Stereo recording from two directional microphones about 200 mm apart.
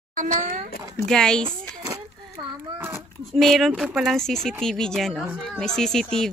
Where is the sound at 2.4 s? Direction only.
20° right (ahead or behind).